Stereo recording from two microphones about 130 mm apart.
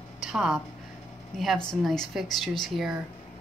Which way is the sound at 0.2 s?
5° right (ahead or behind).